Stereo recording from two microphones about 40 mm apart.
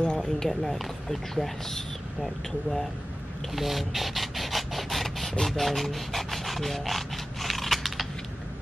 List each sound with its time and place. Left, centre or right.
0.0 s run: left
0.5 s speech: centre
3.5 s printer: centre
5.4 s rub: centre